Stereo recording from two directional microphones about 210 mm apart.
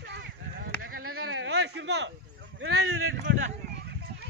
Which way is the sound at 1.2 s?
65° right (ahead or behind).